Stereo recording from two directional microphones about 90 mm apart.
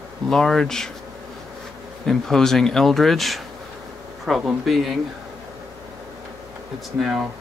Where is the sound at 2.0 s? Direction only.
5° left (ahead or behind).